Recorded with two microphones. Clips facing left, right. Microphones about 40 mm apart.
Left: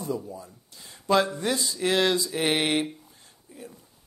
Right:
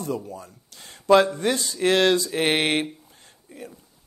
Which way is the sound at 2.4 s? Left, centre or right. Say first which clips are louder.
Right 3 dB; right.